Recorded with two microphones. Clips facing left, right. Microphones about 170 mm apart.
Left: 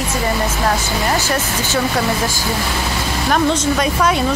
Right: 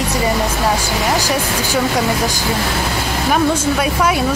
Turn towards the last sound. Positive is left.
turn(degrees=-5)  # may be behind; listen again after turning